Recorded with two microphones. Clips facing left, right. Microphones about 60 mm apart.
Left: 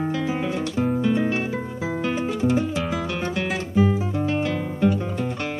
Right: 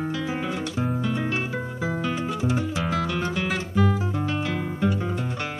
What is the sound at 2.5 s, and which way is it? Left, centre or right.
Music, centre.